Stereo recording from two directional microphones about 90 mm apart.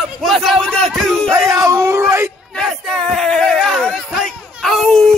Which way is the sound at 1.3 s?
35° right (ahead or behind).